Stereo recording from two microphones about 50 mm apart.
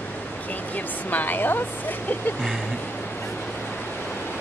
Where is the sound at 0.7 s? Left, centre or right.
Left.